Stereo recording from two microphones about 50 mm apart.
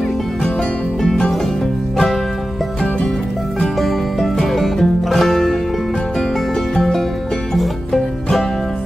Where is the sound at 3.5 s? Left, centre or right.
Centre.